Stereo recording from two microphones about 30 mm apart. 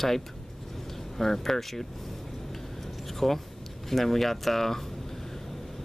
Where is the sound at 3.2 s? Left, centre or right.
Centre.